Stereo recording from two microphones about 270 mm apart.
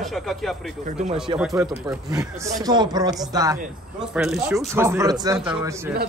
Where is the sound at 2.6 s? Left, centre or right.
Centre.